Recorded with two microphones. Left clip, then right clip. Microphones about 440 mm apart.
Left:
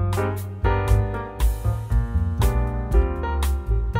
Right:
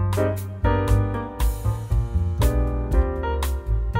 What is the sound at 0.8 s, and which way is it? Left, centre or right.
Music, centre.